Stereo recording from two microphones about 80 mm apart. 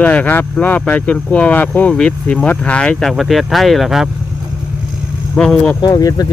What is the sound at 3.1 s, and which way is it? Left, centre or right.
Speech, centre.